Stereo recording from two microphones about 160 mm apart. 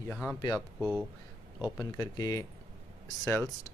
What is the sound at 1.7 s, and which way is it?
Speech, 20° left (ahead or behind).